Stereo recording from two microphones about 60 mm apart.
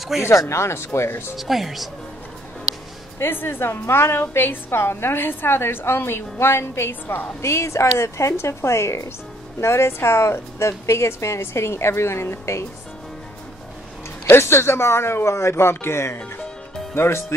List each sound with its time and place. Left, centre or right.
0.2 s a woman's voice: left
1.3 s speech: centre
3.2 s a woman's voice: left
7.4 s a woman's voice: left
14.2 s a woman's voice: left